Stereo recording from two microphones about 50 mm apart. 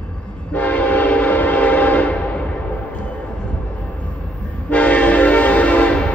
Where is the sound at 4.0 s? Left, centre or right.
Left.